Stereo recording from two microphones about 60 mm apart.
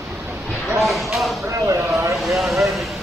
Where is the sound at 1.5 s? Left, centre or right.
Right.